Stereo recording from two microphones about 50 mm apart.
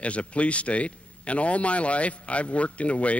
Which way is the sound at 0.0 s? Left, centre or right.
Left.